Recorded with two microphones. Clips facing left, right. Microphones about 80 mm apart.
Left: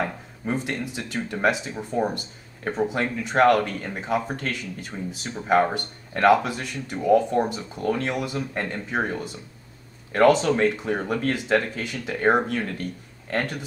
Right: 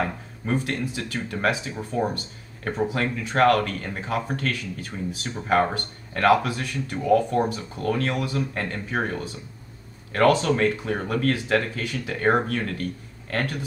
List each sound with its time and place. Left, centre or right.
0.0 s speech: centre
10.1 s speech: centre